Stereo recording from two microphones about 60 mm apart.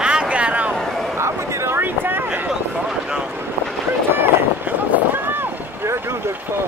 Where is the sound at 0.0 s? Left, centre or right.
Centre.